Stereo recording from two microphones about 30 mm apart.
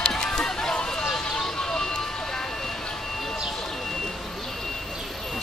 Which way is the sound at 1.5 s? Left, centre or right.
Left.